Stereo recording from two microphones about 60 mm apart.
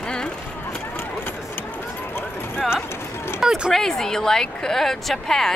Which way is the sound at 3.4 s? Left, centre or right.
Centre.